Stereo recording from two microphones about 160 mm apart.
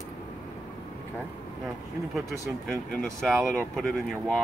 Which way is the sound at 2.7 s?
Centre (ahead or behind).